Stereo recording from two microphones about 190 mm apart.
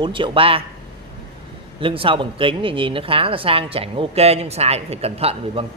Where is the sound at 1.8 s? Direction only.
30° right (ahead or behind).